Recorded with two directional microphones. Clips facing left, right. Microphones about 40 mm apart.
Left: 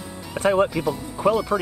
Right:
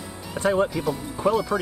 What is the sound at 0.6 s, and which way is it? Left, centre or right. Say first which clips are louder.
Speech: left 2 dB; centre.